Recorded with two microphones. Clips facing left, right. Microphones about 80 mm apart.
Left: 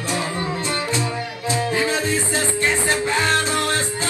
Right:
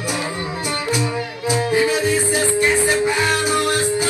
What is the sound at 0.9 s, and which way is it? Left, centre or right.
Music, centre.